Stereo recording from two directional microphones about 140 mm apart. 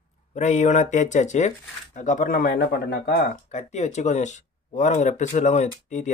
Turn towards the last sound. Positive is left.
turn(degrees=55)  # may be behind; listen again after turning